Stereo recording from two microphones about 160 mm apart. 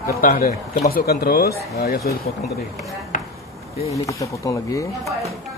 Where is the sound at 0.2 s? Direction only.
65° left (ahead or behind); by 1.5 s 80° left.